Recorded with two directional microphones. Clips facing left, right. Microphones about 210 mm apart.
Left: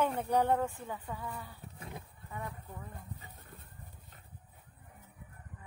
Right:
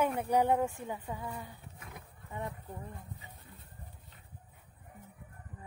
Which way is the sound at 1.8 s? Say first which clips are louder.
Left 7 dB; 30° left (ahead or behind).